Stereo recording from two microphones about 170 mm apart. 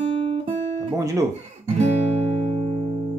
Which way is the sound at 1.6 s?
40° right (ahead or behind).